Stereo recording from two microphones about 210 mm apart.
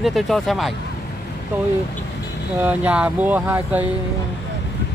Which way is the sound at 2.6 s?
5° right (ahead or behind).